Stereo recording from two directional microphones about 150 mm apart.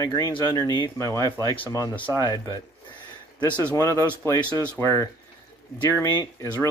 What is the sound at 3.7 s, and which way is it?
Speech, 20° left (ahead or behind).